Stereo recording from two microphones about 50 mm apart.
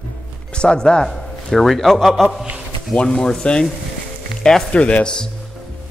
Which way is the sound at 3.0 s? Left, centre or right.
Centre.